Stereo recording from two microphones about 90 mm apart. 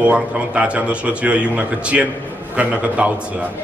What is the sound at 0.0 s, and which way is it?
A man's voice, 15° right (ahead or behind).